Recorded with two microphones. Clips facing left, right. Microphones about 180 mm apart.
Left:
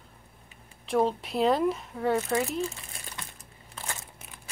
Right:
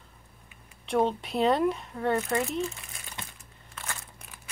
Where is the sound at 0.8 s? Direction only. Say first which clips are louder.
Even; centre (ahead or behind).